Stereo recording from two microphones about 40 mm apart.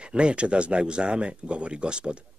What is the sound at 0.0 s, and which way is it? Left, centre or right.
Speech, right.